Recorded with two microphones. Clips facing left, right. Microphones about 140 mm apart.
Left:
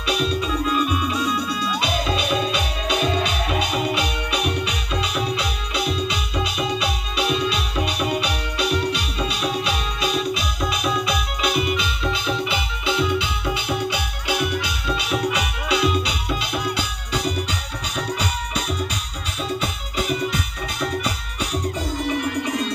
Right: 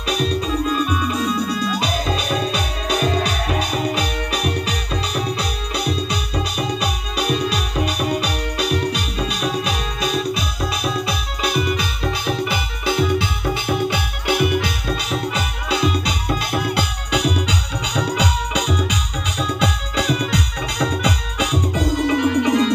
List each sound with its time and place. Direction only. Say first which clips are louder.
0.1 s music: right 2 dB; 40° right (ahead or behind)
15.0 s music: even; 35° right (ahead or behind); by 22.7 s 90° right